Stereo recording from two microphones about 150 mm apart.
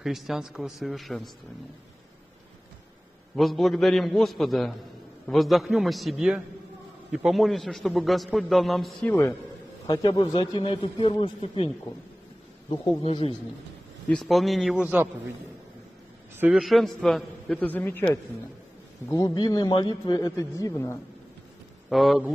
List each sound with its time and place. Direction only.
0.0 s a man's voice: centre (ahead or behind)
3.3 s a man's voice: centre (ahead or behind)
9.1 s speech: 15° left (ahead or behind)
9.8 s a man's voice: 30° left (ahead or behind)
13.0 s a man's voice: 40° left (ahead or behind)
14.0 s a man's voice: centre (ahead or behind)
16.3 s a man's voice: 5° right (ahead or behind); by 18.0 s 10° left (ahead or behind)
19.0 s a man's voice: 25° left (ahead or behind)
21.8 s a man's voice: centre (ahead or behind)